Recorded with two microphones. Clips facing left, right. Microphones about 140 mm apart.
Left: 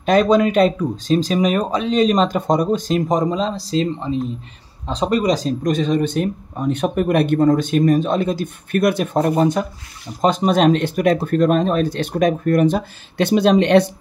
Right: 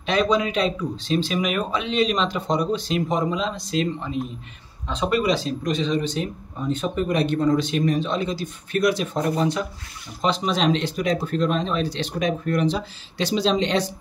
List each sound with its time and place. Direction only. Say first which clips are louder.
0.0 s speech: left 7 dB; 45° left (ahead or behind)